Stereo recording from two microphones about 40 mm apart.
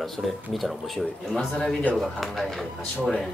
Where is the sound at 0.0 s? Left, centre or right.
Centre.